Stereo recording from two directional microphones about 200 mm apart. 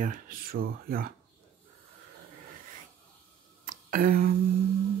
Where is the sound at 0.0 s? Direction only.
45° right (ahead or behind).